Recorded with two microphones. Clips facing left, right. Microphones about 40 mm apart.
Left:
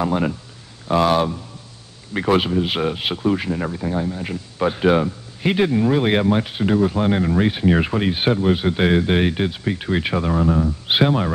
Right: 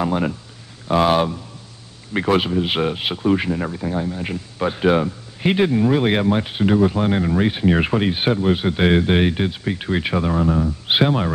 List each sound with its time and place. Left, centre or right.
0.0 s speech: centre
1.0 s speech: centre
2.2 s speech: centre
2.6 s speech: centre
3.0 s speech: centre
5.4 s speech: centre
6.4 s speech: centre